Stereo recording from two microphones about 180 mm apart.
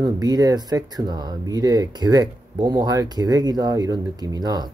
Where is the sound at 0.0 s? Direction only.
20° right (ahead or behind).